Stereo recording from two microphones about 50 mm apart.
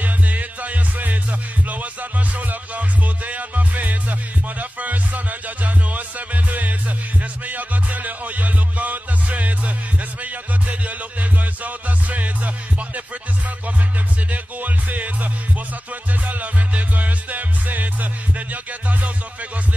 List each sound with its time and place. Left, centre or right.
0.0 s music: right
14.3 s music: right